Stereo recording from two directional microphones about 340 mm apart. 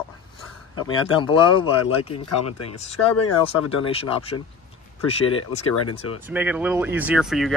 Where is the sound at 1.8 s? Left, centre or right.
Left.